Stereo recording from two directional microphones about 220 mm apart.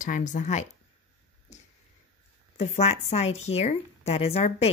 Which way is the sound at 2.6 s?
30° left (ahead or behind).